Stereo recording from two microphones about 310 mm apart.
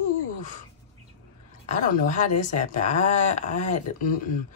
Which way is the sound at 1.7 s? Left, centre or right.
Left.